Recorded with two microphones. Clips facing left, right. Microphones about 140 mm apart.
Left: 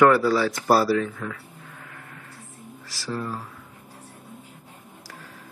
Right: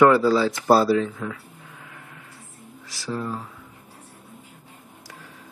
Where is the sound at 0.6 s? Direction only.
20° right (ahead or behind); by 2.2 s 5° right (ahead or behind).